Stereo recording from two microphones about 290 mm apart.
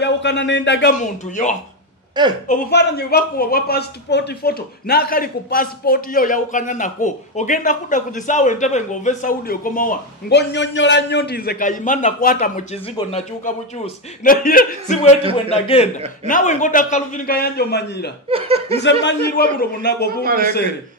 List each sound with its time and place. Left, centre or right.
0.0 s speech: left
14.2 s speech: left
18.3 s speech: centre
18.8 s speech: left
20.1 s a man's voice: right